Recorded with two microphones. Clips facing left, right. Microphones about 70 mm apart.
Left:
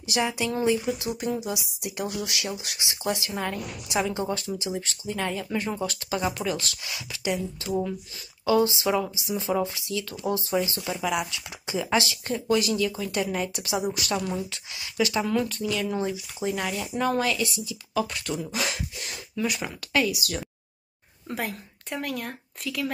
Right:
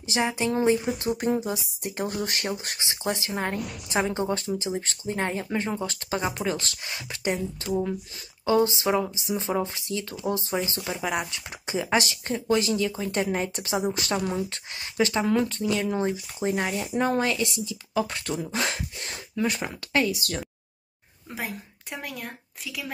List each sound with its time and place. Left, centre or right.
0.0 s speech: right
7.1 s speech: right
14.5 s speech: right
21.3 s speech: centre